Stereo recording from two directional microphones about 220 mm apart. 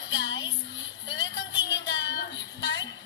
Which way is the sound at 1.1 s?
55° left (ahead or behind).